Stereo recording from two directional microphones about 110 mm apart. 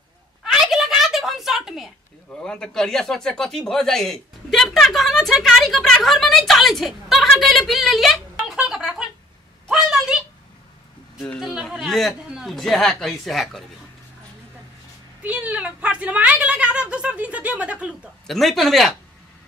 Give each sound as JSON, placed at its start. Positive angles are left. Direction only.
{"t": 0.4, "sound": "a sound", "side_deg": -5}
{"t": 2.4, "sound": "speech", "side_deg": 5}
{"t": 9.7, "sound": "a sound", "side_deg": -5}
{"t": 11.1, "sound": "a woman's voice", "side_deg": 0}
{"t": 15.2, "sound": "a woman's voice", "side_deg": -10}
{"t": 18.2, "sound": "a woman's voice", "side_deg": 0}